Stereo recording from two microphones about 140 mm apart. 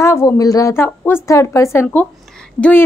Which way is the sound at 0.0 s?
20° left (ahead or behind).